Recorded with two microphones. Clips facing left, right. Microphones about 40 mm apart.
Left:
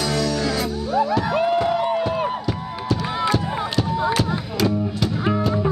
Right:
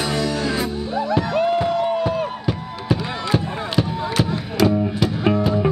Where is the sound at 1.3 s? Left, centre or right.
Centre.